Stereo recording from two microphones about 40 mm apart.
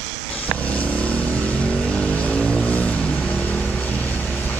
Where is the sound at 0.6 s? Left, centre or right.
Left.